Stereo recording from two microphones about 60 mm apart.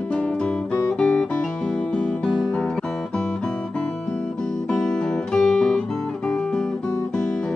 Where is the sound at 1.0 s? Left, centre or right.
Centre.